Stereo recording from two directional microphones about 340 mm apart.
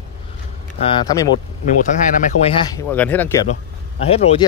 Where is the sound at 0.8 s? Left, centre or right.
Centre.